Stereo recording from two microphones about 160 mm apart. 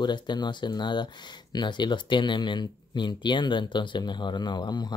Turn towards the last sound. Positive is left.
turn(degrees=25)  # may be behind; listen again after turning